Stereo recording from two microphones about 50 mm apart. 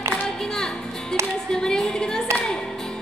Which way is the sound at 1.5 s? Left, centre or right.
Centre.